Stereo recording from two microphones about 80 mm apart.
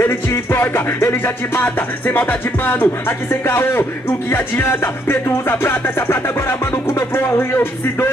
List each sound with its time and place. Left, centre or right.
0.0 s music: left
3.4 s a man's voice: left
4.3 s music: left